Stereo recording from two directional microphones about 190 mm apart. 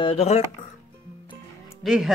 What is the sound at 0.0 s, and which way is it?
Speech, 30° left (ahead or behind).